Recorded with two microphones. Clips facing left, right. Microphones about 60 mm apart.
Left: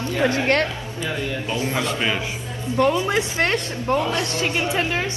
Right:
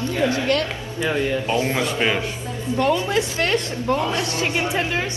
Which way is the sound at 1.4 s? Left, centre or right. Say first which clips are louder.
Right 4 dB; right.